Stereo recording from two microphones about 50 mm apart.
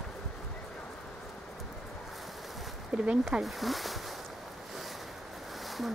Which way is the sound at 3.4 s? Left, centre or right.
Centre.